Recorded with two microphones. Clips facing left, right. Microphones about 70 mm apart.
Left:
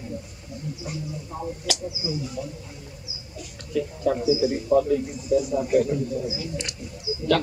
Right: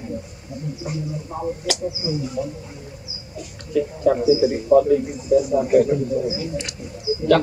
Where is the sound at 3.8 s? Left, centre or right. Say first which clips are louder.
Right 6 dB; right.